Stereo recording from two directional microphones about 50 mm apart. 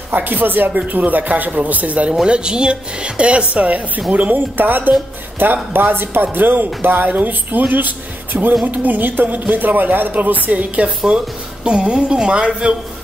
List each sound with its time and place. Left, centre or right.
0.1 s speech: right
2.2 s a woman's voice: centre
11.1 s a woman's voice: centre